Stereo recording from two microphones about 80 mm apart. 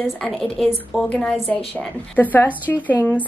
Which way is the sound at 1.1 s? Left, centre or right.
Centre.